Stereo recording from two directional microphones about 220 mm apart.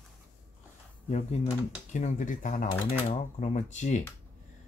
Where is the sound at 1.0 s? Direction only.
30° left (ahead or behind).